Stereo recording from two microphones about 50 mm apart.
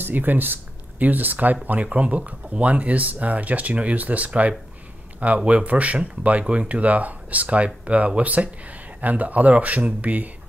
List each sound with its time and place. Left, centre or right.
0.0 s speech: right
6.4 s speech: centre
6.7 s speech: right